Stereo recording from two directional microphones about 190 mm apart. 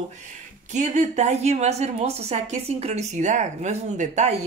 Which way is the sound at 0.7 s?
40° right (ahead or behind).